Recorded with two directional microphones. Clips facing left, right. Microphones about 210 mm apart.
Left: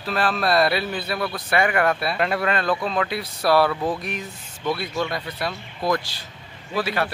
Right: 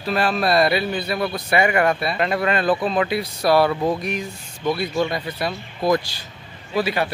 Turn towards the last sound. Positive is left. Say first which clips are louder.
# right 3 dB
turn(degrees=0)  # may be behind; listen again after turning